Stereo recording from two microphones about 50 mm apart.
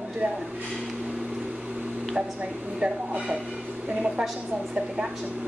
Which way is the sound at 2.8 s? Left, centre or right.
Right.